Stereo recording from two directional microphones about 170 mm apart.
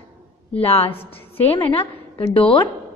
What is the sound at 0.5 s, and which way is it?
A woman's voice, 35° left (ahead or behind).